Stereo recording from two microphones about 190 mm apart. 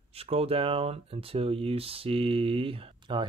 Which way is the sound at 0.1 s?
30° right (ahead or behind).